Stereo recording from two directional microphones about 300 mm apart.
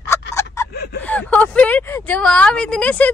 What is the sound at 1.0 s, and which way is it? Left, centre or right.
Speech, centre.